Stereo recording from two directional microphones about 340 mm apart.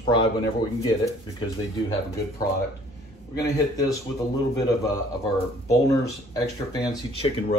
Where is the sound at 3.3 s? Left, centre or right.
Centre.